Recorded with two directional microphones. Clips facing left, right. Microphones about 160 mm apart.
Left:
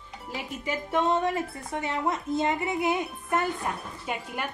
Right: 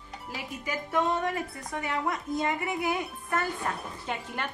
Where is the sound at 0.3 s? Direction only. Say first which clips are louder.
Left 3 dB; 25° left (ahead or behind).